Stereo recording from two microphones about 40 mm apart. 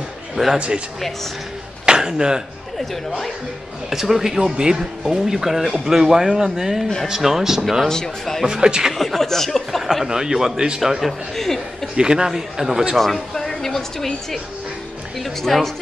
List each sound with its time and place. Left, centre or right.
0.6 s speech: right
1.9 s speech: centre
3.9 s speech: centre
7.9 s speech: centre
8.5 s speech: centre
8.9 s chuckle: centre
10.0 s speech: centre
10.8 s a woman's voice: centre
11.3 s a sound: centre
12.0 s speech: centre
12.9 s a woman's voice: centre